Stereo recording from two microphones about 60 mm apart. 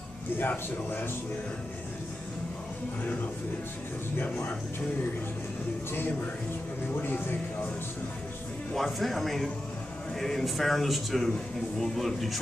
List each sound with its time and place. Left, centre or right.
0.4 s speech: left
7.0 s speech: left
8.7 s speech: centre